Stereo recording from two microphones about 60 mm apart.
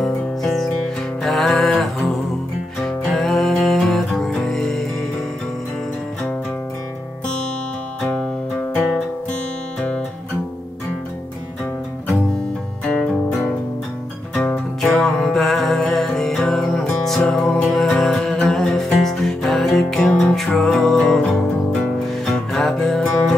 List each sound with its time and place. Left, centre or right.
0.0 s music: centre
8.0 s music: centre
9.8 s music: centre
14.8 s music: centre